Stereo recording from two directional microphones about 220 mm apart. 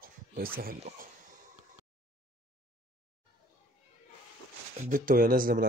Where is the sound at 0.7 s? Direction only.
30° right (ahead or behind).